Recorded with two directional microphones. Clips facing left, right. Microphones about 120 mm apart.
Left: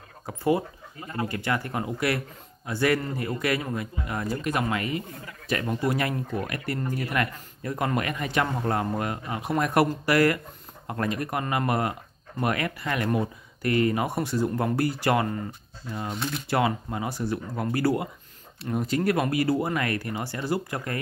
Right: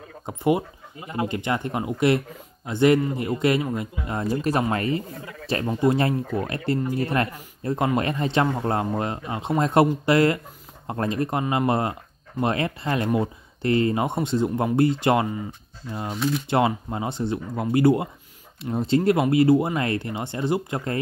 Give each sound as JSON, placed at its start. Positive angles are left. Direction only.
{"t": 0.3, "sound": "speech", "side_deg": -20}
{"t": 16.4, "sound": "speech", "side_deg": -25}